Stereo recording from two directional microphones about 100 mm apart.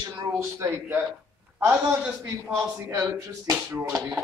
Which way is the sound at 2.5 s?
30° right (ahead or behind).